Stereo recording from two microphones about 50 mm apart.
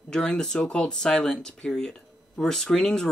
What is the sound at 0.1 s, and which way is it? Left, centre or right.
Speech, centre.